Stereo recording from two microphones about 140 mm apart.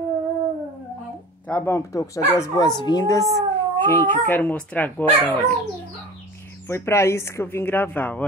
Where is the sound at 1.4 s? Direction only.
15° left (ahead or behind).